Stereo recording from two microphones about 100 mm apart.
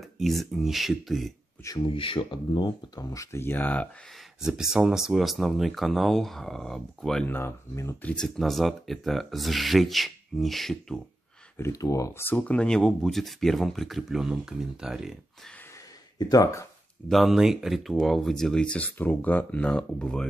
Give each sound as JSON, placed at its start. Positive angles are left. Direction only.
{"t": 0.2, "sound": "speech", "side_deg": 0}
{"t": 1.9, "sound": "speech", "side_deg": 60}
{"t": 3.1, "sound": "speech", "side_deg": 30}
{"t": 4.4, "sound": "speech", "side_deg": -5}
{"t": 7.2, "sound": "speech", "side_deg": 25}
{"t": 8.0, "sound": "speech", "side_deg": 15}
{"t": 8.4, "sound": "speech", "side_deg": 0}
{"t": 11.5, "sound": "speech", "side_deg": 30}
{"t": 16.2, "sound": "speech", "side_deg": 35}
{"t": 17.1, "sound": "speech", "side_deg": 0}